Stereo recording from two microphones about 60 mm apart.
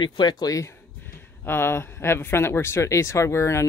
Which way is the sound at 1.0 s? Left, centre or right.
Left.